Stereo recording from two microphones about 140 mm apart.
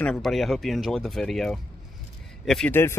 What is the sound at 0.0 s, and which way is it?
A man's voice, centre (ahead or behind).